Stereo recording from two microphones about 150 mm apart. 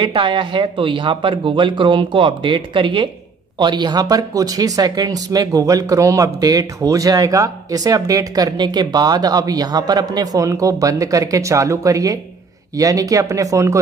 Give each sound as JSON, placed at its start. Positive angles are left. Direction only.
{"t": 0.0, "sound": "speech", "side_deg": -35}